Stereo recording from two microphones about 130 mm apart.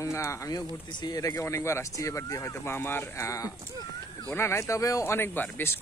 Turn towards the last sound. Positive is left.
turn(degrees=15)  # may be behind; listen again after turning